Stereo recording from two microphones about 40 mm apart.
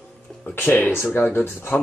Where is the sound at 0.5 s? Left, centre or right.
Left.